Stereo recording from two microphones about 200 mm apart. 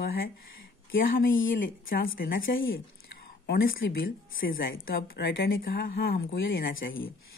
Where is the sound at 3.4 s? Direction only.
50° left (ahead or behind).